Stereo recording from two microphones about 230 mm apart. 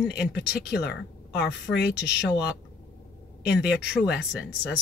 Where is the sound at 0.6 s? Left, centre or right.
Left.